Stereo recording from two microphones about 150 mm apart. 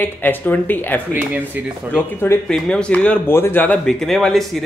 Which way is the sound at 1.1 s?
10° right (ahead or behind).